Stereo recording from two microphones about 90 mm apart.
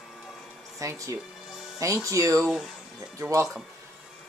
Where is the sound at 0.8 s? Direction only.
35° right (ahead or behind).